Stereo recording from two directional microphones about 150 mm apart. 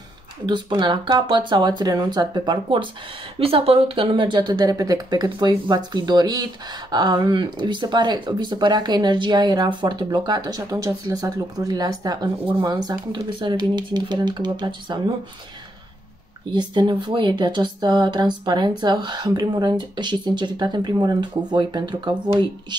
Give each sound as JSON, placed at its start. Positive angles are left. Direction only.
{"t": 0.5, "sound": "speech", "side_deg": -30}
{"t": 16.5, "sound": "speech", "side_deg": -30}